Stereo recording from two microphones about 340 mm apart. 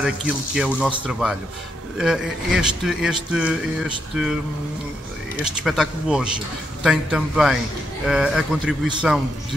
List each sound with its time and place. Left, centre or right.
0.0 s speech: centre
5.4 s speech: centre